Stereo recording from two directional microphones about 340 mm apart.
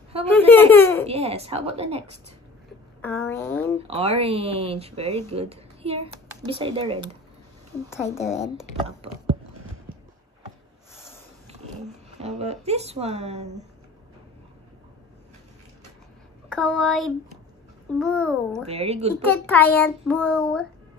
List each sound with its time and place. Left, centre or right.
0.3 s speech: centre
1.0 s speech: centre
3.0 s a woman's voice: centre
3.8 s a woman's voice: centre
7.9 s child singing: centre
12.2 s speech: centre
16.5 s child singing: centre
18.7 s speech: centre
19.2 s child singing: centre